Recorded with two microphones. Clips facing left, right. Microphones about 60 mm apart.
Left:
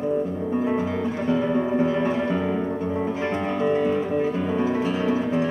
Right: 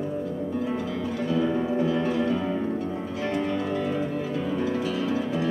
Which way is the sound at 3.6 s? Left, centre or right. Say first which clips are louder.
Left 6 dB; left.